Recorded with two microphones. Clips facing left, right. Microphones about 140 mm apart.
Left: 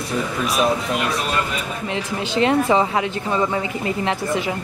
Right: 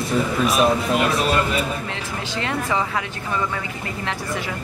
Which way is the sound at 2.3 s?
25° left (ahead or behind).